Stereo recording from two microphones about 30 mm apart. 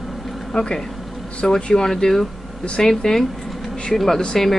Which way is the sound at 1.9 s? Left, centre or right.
Centre.